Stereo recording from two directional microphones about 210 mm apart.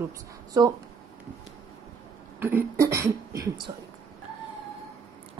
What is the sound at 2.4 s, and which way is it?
A woman's voice, 10° right (ahead or behind).